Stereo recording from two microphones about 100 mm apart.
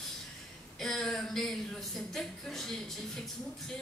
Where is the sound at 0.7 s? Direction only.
5° left (ahead or behind).